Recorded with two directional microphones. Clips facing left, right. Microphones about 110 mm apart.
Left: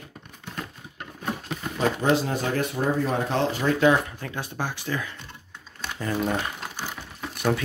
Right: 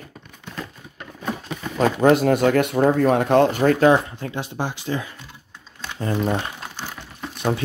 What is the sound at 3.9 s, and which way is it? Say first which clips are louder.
Speech: right 5 dB; 25° right (ahead or behind).